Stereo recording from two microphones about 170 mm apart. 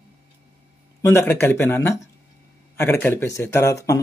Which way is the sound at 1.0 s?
15° left (ahead or behind).